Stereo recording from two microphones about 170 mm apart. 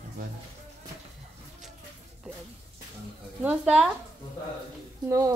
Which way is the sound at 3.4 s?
5° right (ahead or behind).